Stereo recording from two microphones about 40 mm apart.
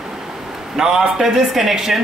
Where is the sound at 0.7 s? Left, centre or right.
Centre.